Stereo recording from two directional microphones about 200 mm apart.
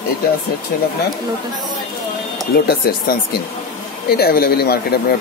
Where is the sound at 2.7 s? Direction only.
50° left (ahead or behind).